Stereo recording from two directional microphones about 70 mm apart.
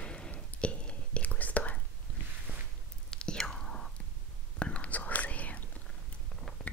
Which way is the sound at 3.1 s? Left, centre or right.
Centre.